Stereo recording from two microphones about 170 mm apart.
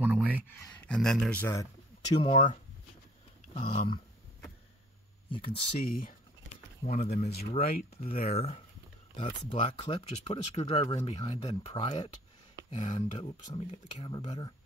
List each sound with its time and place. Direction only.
0.0 s a sound: 10° right (ahead or behind)
0.7 s speech: 5° left (ahead or behind); by 2.3 s 25° left (ahead or behind)
2.3 s speech: 40° left (ahead or behind)
5.3 s speech: 30° left (ahead or behind)
5.9 s speech: 55° left (ahead or behind)
6.8 s speech: 40° left (ahead or behind)
7.2 s speech: 60° left (ahead or behind)
8.4 s speech: 35° left (ahead or behind)
13.2 s speech: 30° left (ahead or behind)